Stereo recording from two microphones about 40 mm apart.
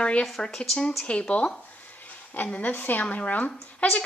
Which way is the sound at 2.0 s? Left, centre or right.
Left.